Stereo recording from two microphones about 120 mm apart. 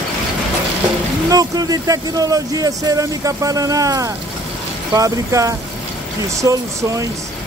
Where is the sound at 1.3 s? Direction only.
30° right (ahead or behind).